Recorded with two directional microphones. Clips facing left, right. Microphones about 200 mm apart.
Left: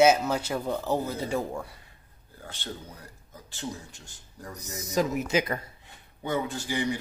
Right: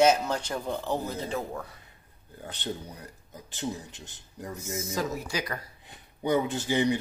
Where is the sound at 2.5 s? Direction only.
20° right (ahead or behind).